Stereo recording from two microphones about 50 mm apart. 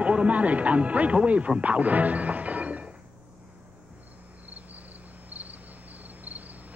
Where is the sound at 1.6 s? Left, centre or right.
Right.